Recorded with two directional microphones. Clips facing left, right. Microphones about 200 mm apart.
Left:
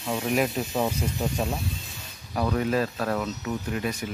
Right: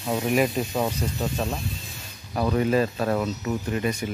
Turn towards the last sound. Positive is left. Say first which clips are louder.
# right 3 dB
turn(degrees=0)  # may be behind; listen again after turning